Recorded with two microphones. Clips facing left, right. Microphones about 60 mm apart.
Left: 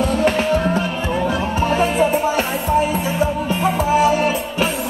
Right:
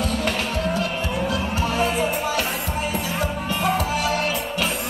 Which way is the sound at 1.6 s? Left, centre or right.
Left.